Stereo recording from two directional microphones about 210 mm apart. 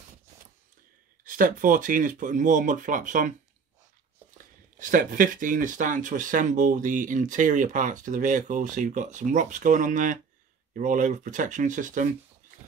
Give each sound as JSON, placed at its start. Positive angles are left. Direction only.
{"t": 1.2, "sound": "speech", "side_deg": -40}
{"t": 4.7, "sound": "speech", "side_deg": -40}